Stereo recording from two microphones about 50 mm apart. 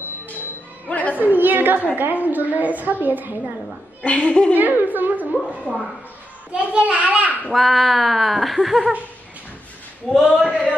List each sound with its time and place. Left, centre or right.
0.8 s music: left
1.1 s a sound: right
2.0 s a woman's voice: right
4.0 s speech: left
4.6 s a woman's voice: right
5.7 s speech: left
6.5 s a child's voice: right
7.5 s speech: centre
10.2 s a man's voice: centre